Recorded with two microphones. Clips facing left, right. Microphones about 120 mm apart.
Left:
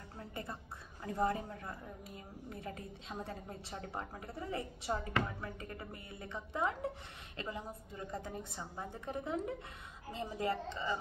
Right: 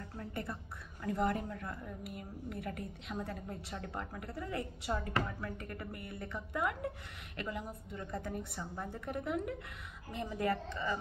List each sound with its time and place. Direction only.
0.2 s a woman's voice: 20° left (ahead or behind)